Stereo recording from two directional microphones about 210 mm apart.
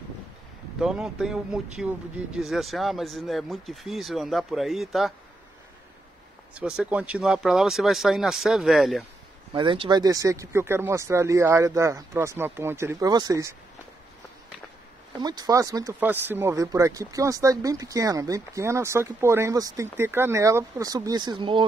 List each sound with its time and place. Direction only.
0.7 s speech: centre (ahead or behind)
6.5 s speech: 5° right (ahead or behind)
9.5 s speech: 25° right (ahead or behind)
15.2 s speech: 20° right (ahead or behind)